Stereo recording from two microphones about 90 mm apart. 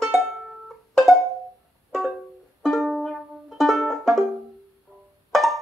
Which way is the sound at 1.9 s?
Centre (ahead or behind).